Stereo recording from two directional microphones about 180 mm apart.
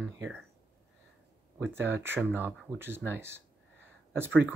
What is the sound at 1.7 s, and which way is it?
Speech, 10° right (ahead or behind).